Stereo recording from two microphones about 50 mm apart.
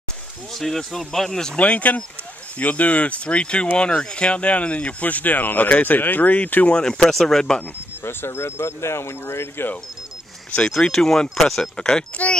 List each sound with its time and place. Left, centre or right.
0.6 s speech: centre
1.6 s speech: left
6.8 s speech: centre
8.0 s speech: left
10.5 s speech: centre
11.8 s speech: left